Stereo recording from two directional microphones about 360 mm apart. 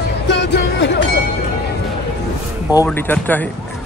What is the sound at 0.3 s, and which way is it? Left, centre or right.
Music, left.